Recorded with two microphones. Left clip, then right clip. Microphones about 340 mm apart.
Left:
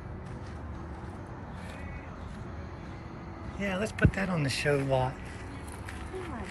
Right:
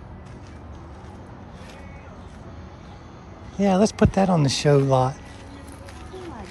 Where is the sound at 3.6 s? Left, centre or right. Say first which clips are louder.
Right 11 dB; centre.